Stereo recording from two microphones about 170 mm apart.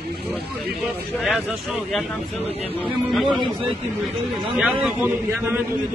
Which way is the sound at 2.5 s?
35° left (ahead or behind).